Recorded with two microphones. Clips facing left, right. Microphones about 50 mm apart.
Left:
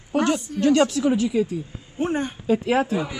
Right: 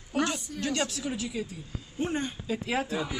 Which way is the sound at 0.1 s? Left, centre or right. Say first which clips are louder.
Left 8 dB; left.